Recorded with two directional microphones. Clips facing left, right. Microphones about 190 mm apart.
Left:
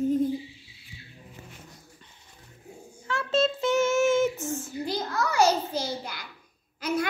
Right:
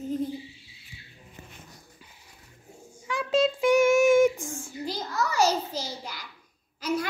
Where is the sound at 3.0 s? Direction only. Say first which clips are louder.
Right 1 dB; 15° right (ahead or behind).